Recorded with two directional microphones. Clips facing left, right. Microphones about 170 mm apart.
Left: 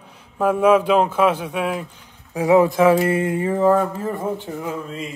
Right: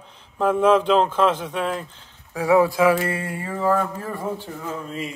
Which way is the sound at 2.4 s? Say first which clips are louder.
Left 3 dB; 20° left (ahead or behind).